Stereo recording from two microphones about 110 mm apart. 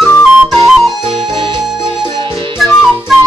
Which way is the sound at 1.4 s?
45° right (ahead or behind).